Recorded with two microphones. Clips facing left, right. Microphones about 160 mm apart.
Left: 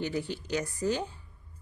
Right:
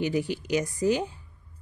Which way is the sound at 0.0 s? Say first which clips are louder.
Right 5 dB; 10° right (ahead or behind).